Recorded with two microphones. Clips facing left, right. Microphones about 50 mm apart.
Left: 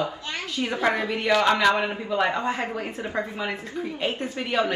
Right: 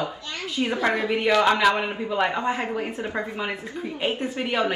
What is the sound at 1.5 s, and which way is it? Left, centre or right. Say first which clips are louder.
A man's voice: even; centre.